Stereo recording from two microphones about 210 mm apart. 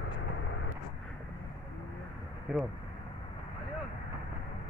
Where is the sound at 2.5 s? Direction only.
5° right (ahead or behind).